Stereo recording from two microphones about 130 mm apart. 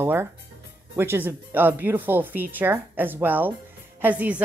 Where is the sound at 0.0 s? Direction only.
20° right (ahead or behind).